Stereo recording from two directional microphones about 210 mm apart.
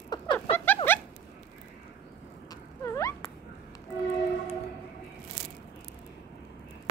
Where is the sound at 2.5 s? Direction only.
15° left (ahead or behind).